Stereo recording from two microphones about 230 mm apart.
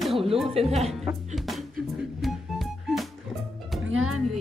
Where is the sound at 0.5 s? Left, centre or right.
Right.